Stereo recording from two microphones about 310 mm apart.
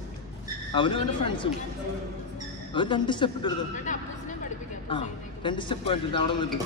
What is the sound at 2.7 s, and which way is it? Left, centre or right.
A man's voice, centre.